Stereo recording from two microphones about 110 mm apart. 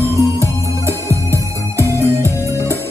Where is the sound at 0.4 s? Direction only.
25° right (ahead or behind).